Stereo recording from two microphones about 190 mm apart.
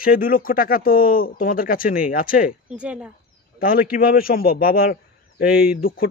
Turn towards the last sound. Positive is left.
turn(degrees=50)  # may be behind; listen again after turning